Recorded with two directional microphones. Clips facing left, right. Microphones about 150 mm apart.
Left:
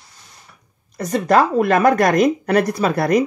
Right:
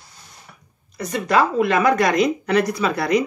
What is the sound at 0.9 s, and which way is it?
Speech, 45° left (ahead or behind).